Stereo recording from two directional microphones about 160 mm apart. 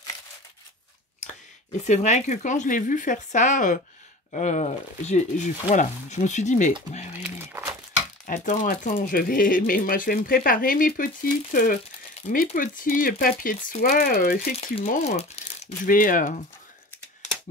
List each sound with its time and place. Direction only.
1.8 s speech: 45° left (ahead or behind)
7.2 s crumpling: 15° right (ahead or behind)
8.3 s speech: 55° left (ahead or behind)
15.0 s speech: 40° left (ahead or behind)
15.9 s speech: 60° left (ahead or behind)